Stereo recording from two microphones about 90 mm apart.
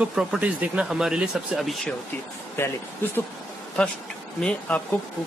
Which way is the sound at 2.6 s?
30° left (ahead or behind).